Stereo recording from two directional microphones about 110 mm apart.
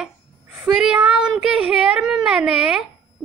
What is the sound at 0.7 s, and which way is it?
Speech, 5° right (ahead or behind).